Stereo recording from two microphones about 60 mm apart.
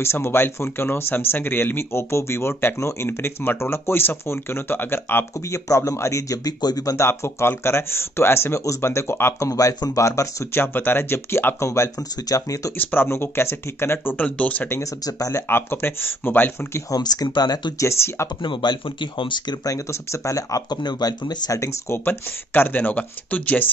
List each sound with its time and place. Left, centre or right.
0.0 s speech: left
5.5 s speech: left
7.0 s speech: left
9.4 s speech: left
10.5 s speech: left
12.3 s speech: left
12.7 s speech: left
14.2 s speech: left
14.8 s speech: left
15.4 s speech: left
16.9 s speech: left
17.8 s speech: left
19.9 s speech: left
21.9 s speech: left